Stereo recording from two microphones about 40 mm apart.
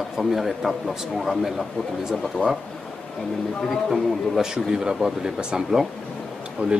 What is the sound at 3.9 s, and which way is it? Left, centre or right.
Speech, centre.